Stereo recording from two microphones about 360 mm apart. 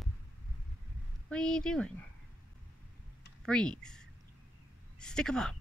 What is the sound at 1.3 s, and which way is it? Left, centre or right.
Speech, centre.